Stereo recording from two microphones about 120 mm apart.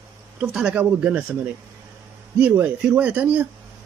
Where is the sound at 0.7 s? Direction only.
15° right (ahead or behind).